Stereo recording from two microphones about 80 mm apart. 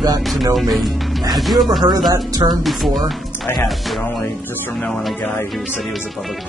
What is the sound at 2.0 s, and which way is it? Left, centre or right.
Speech, right.